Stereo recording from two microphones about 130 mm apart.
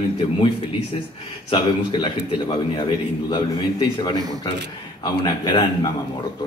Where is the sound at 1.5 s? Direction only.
40° left (ahead or behind).